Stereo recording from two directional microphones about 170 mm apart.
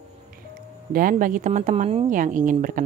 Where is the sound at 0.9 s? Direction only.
55° right (ahead or behind); by 2.1 s 35° right (ahead or behind).